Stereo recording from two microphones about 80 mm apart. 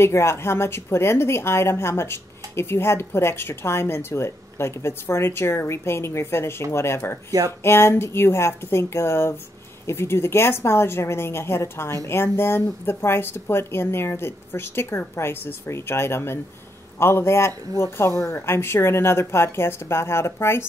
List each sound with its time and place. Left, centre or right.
0.0 s a woman's voice: left
7.2 s speech: right
7.6 s a woman's voice: left